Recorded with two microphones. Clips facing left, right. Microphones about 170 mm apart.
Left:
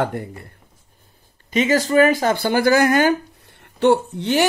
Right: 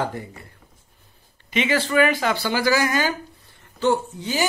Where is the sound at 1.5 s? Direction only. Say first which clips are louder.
Left 4 dB; 40° left (ahead or behind).